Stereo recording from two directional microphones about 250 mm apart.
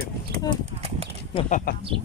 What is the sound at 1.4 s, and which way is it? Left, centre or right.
Speech, left.